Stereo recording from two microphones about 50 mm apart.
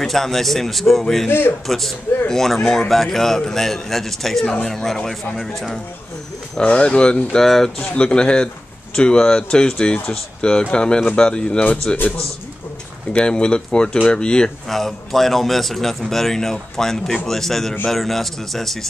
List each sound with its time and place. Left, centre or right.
0.0 s a man's voice: centre
6.6 s speech: left
7.4 s a man's voice: centre
7.9 s a man's voice: centre
13.1 s speech: centre
14.7 s a man's voice: centre